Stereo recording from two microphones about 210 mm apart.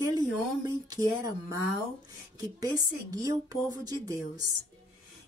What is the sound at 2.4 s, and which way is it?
A woman's voice, 15° right (ahead or behind).